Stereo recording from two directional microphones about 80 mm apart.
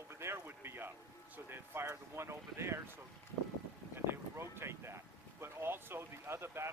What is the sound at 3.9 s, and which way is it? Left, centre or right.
Speech, right.